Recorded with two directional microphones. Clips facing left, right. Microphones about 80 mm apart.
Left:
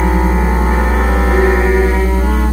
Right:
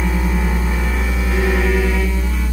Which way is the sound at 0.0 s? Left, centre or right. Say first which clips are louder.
Left 7 dB; left.